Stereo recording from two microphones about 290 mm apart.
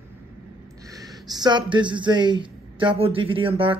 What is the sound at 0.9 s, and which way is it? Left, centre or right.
Speech, centre.